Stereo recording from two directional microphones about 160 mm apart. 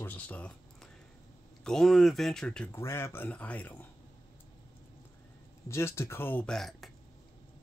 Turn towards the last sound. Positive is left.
turn(degrees=0)  # may be behind; listen again after turning